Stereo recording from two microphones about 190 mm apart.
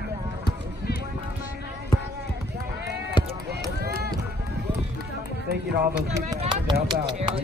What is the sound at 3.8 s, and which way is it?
Run, 60° right (ahead or behind).